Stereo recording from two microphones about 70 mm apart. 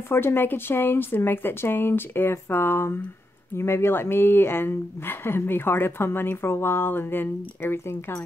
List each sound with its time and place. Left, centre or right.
0.1 s speech: left